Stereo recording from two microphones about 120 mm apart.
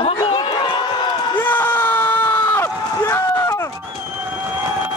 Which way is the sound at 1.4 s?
15° left (ahead or behind).